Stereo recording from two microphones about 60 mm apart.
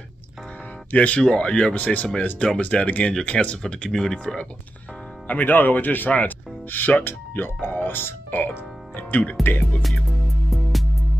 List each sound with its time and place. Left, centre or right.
0.9 s speech: left
2.6 s speech: left
3.6 s speech: centre
5.3 s speech: left
9.4 s music: left
10.5 s music: centre